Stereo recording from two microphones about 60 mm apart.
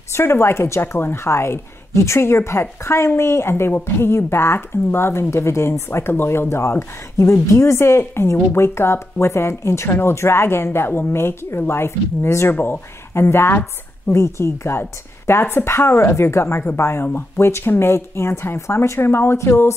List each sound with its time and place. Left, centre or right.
0.1 s speech: left
12.4 s speech: left
19.3 s speech: left